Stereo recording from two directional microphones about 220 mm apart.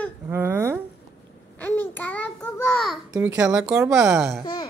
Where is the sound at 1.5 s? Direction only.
10° left (ahead or behind).